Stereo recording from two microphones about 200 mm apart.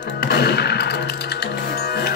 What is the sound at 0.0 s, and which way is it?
Music, 55° left (ahead or behind).